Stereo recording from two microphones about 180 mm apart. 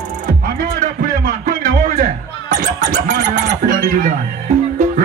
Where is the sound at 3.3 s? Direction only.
45° right (ahead or behind).